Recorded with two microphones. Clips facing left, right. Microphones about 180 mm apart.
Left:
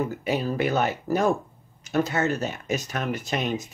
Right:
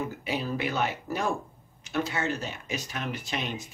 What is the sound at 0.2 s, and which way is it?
Speech, 45° left (ahead or behind).